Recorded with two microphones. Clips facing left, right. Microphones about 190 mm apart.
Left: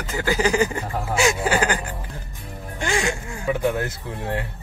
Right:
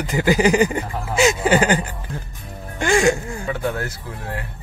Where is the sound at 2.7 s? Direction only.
50° right (ahead or behind).